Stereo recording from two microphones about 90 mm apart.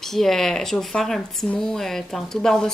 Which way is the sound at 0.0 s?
5° left (ahead or behind).